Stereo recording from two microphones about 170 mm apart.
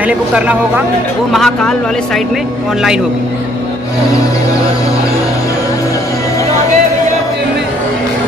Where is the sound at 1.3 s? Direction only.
Centre (ahead or behind).